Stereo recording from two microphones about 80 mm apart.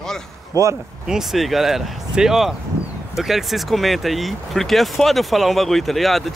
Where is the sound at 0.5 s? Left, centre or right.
Right.